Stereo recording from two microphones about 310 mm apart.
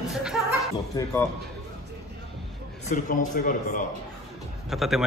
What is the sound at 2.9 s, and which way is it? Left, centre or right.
Speech, left.